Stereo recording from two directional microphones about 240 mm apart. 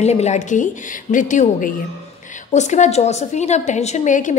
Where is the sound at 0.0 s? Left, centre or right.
Left.